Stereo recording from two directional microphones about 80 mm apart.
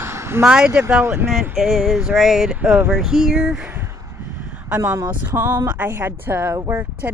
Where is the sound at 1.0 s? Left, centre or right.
Right.